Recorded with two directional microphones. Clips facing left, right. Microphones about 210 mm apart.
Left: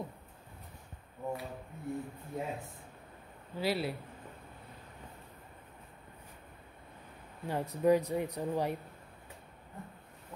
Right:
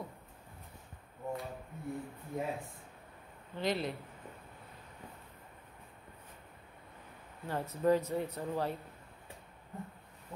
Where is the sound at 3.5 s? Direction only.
5° left (ahead or behind).